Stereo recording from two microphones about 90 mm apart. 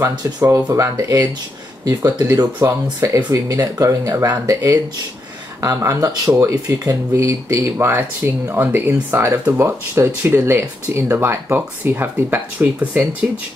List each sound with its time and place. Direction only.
0.7 s speech: 40° right (ahead or behind)
2.6 s speech: 35° right (ahead or behind); by 12.6 s 20° right (ahead or behind)
12.7 s speech: 10° right (ahead or behind)